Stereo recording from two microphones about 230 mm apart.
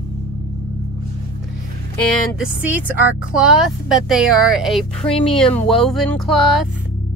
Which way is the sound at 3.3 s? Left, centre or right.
Centre.